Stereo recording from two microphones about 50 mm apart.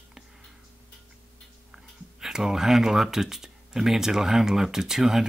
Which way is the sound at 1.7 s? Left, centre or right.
Centre.